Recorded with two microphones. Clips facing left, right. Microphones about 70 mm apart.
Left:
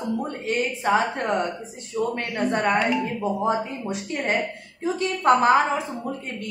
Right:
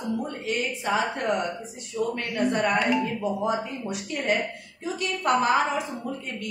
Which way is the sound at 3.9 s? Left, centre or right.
Left.